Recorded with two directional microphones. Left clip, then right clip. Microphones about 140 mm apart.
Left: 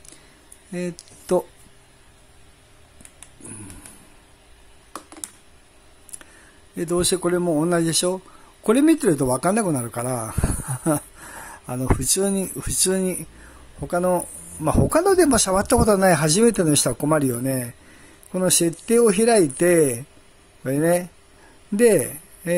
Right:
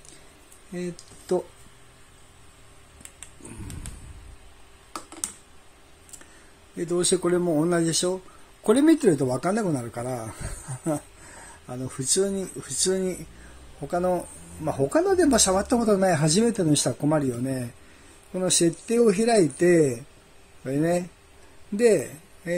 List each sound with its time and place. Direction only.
0.7 s speech: 35° left (ahead or behind)
6.8 s a man's voice: 35° left (ahead or behind)